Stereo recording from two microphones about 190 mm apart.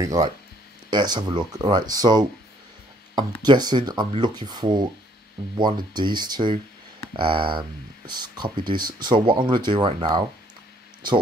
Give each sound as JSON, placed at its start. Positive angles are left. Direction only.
{"t": 0.0, "sound": "speech", "side_deg": -20}
{"t": 3.4, "sound": "speech", "side_deg": -20}
{"t": 5.9, "sound": "speech", "side_deg": -25}